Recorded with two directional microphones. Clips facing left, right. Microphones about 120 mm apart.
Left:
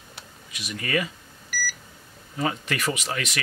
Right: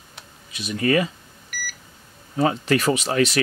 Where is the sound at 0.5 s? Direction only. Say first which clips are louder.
Right 8 dB; 30° right (ahead or behind).